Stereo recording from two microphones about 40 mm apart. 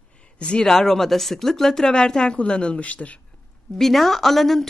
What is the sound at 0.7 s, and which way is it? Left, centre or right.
A woman's voice, centre.